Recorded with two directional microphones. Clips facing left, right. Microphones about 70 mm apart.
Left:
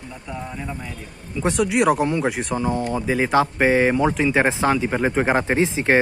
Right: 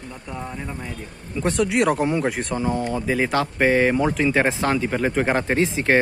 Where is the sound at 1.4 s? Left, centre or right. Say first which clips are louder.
Left 1 dB; centre.